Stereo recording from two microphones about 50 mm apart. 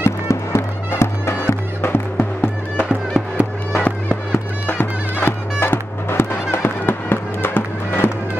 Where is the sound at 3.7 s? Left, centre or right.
Left.